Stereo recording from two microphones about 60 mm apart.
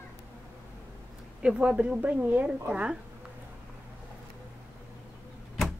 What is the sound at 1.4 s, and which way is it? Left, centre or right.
Speech, centre.